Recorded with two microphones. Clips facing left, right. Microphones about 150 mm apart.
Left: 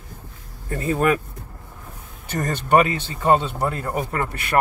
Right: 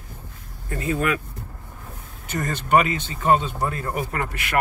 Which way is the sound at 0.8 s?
35° left (ahead or behind).